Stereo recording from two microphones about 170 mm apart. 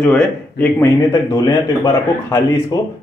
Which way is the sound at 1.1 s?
25° left (ahead or behind).